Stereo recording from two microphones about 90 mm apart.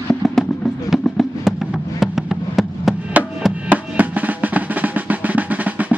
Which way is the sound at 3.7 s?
15° right (ahead or behind).